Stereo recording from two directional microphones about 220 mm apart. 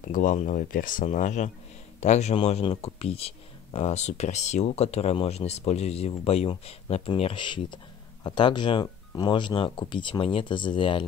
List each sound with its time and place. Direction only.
0.0 s speech: 35° left (ahead or behind)